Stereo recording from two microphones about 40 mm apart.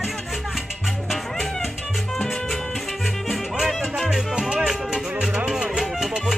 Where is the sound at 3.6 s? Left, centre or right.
Centre.